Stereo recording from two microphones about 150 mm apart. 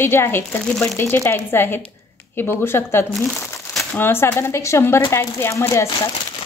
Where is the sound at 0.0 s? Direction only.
15° left (ahead or behind).